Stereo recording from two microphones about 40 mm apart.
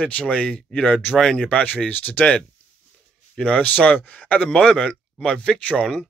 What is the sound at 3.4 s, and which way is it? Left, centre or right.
Speech, left.